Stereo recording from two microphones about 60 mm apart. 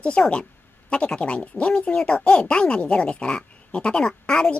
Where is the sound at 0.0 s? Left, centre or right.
Centre.